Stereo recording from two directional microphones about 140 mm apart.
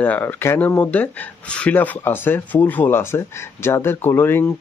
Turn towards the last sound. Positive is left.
turn(degrees=15)  # may be behind; listen again after turning